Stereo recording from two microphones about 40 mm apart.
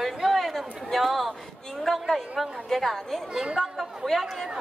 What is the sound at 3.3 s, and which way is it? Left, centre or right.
Speech, centre.